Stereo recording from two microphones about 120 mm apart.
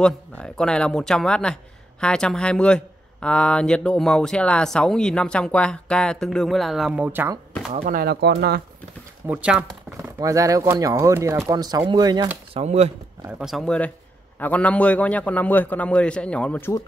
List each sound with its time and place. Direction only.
0.0 s speech: 5° left (ahead or behind)
7.0 s speech: 15° right (ahead or behind)
9.3 s speech: 10° right (ahead or behind)
10.2 s speech: 30° right (ahead or behind)
11.5 s speech: 35° right (ahead or behind)
12.5 s speech: 60° right (ahead or behind)
13.4 s speech: 5° right (ahead or behind)
13.7 s speech: 10° left (ahead or behind)